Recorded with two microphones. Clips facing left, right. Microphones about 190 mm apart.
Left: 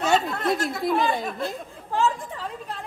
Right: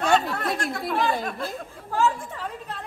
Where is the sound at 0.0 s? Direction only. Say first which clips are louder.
Even; 5° left (ahead or behind).